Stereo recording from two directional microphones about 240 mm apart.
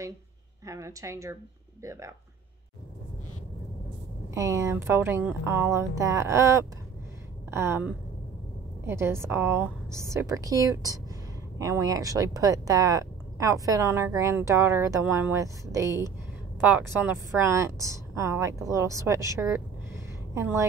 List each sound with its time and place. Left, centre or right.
0.7 s a woman's voice: centre
4.3 s a woman's voice: centre